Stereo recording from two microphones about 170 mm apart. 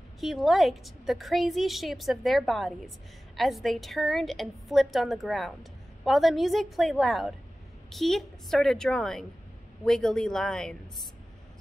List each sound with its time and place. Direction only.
0.2 s a woman's voice: centre (ahead or behind)